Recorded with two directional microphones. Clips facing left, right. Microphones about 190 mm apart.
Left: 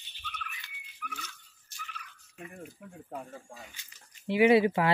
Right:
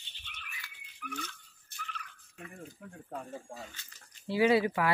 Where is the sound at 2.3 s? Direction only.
10° left (ahead or behind).